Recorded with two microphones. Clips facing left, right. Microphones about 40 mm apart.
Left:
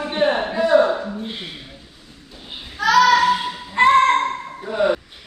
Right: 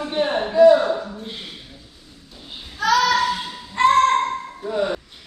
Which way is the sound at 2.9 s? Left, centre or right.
Centre.